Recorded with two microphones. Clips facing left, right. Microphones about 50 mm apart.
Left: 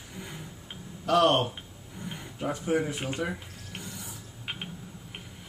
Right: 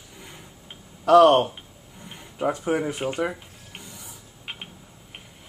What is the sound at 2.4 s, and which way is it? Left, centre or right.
Speech, right.